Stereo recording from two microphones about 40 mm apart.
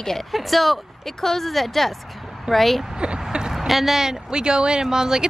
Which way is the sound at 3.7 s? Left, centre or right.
Centre.